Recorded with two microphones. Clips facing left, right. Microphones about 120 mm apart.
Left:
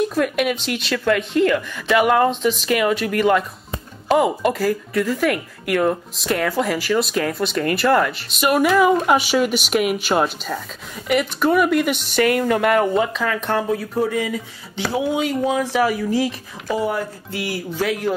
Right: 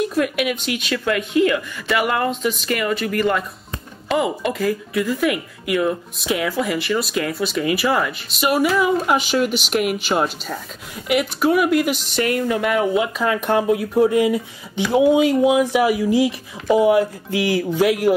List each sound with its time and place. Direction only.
0.1 s speech: 5° right (ahead or behind)
4.5 s speech: centre (ahead or behind)